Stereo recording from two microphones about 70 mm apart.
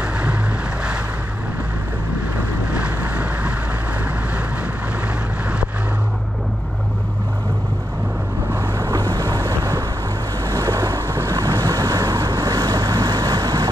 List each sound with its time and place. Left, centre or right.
0.0 s boat: centre
2.7 s boat: centre
8.5 s waves: right